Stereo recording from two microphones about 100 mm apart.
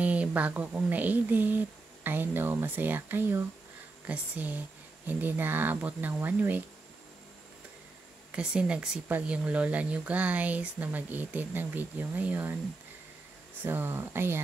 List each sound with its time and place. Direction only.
0.0 s speech: 15° right (ahead or behind)
8.3 s speech: 10° right (ahead or behind)
13.7 s speech: 20° right (ahead or behind)